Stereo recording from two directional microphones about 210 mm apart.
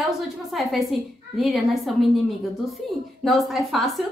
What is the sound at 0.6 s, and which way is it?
A woman's voice, centre (ahead or behind).